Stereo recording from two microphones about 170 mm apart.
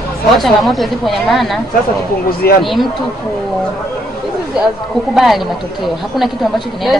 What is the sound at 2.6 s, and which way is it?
Speech, centre (ahead or behind).